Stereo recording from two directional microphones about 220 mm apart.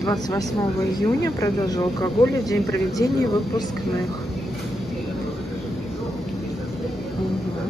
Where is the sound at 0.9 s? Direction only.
15° left (ahead or behind).